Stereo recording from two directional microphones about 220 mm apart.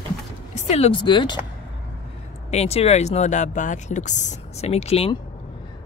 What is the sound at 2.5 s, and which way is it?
Speech, 30° left (ahead or behind).